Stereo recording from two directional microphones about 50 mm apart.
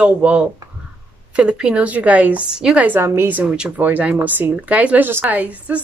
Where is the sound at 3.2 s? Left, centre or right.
Right.